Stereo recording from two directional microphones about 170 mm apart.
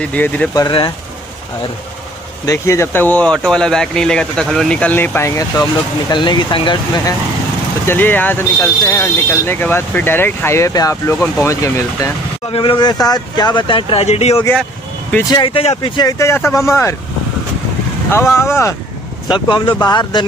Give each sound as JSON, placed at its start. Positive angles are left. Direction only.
{"t": 0.0, "sound": "speech", "side_deg": 10}
{"t": 0.6, "sound": "speech", "side_deg": 30}
{"t": 2.4, "sound": "speech", "side_deg": 20}
{"t": 7.8, "sound": "speech", "side_deg": 10}
{"t": 12.4, "sound": "speech", "side_deg": 30}
{"t": 14.4, "sound": "speech", "side_deg": 10}
{"t": 15.2, "sound": "speech", "side_deg": 30}
{"t": 18.1, "sound": "speech", "side_deg": 15}
{"t": 19.2, "sound": "speech", "side_deg": 25}